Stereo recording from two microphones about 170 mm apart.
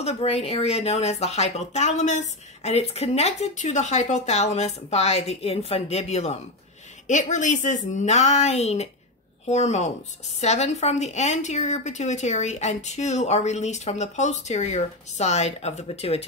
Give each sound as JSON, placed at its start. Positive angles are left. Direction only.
{"t": 0.0, "sound": "a woman's voice", "side_deg": 35}